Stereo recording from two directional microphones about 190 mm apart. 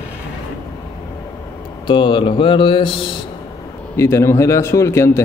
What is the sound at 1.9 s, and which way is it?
Speech, 25° left (ahead or behind).